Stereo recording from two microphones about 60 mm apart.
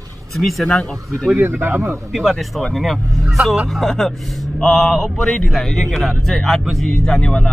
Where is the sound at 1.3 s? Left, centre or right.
Right.